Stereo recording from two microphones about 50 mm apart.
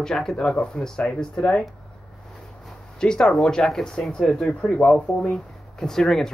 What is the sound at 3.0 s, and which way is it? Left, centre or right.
Speech, centre.